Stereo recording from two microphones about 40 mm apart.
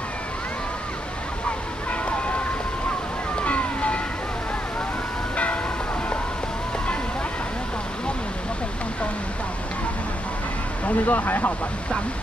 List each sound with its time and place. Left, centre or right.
1.9 s vehicle: left
3.3 s a sound: left
5.3 s vehicle: left
11.1 s speech: left